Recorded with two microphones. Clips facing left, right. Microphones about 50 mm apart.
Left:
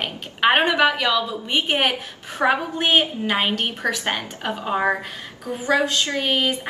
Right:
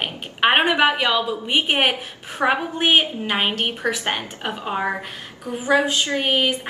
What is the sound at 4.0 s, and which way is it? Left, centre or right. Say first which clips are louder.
Speech: even; right.